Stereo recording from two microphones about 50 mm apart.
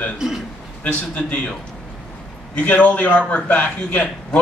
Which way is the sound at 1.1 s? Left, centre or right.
Left.